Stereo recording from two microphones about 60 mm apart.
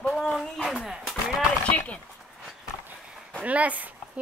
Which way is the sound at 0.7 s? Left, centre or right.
Centre.